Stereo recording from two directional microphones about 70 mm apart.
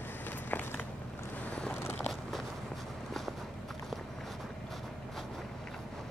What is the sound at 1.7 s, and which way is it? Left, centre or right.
Biting, left.